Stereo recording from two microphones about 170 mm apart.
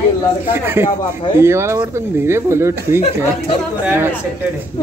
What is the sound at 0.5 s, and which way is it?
Speech, 10° right (ahead or behind).